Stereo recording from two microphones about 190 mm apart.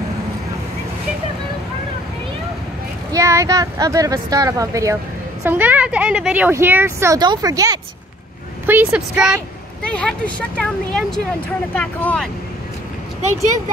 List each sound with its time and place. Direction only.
3.1 s speech: 15° right (ahead or behind)
8.6 s speech: 10° right (ahead or behind)
9.8 s speech: 5° left (ahead or behind)